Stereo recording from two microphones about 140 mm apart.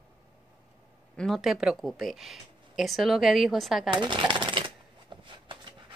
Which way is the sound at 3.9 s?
35° right (ahead or behind).